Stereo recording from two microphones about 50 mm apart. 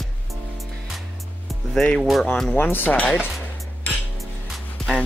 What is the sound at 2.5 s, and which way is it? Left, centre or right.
Speech, left.